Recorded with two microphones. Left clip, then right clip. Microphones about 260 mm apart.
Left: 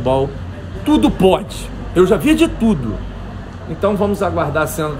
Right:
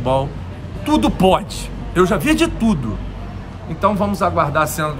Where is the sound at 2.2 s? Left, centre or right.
Centre.